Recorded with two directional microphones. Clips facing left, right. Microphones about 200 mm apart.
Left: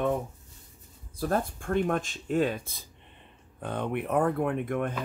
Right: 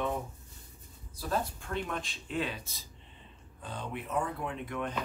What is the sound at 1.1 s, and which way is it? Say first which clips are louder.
Speech: left 5 dB; 55° left (ahead or behind).